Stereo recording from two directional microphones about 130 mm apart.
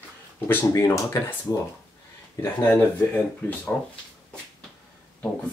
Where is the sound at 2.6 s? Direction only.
15° left (ahead or behind).